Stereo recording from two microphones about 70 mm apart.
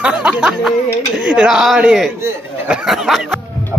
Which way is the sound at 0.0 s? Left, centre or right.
Centre.